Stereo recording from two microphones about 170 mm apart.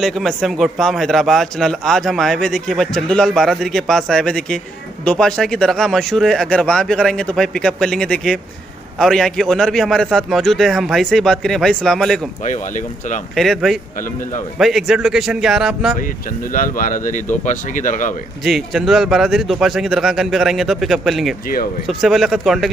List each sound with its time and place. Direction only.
0.0 s a man's voice: centre (ahead or behind)
12.4 s speech: 50° left (ahead or behind)
13.4 s a man's voice: centre (ahead or behind)
16.5 s speech: 55° left (ahead or behind)
18.4 s a man's voice: centre (ahead or behind)